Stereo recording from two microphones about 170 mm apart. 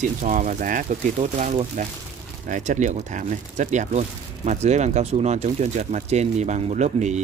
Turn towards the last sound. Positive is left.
turn(degrees=-45)  # may be behind; listen again after turning